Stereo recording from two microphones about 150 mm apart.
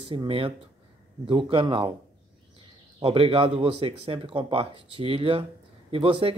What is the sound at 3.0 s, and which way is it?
Speech, 40° right (ahead or behind).